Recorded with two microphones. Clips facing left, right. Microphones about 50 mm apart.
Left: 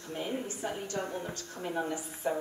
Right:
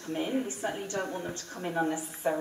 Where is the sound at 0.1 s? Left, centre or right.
Centre.